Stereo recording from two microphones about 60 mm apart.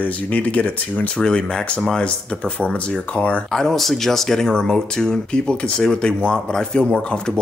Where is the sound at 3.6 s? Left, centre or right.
Centre.